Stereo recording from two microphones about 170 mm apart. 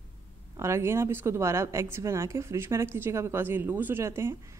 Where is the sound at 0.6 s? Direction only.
15° right (ahead or behind).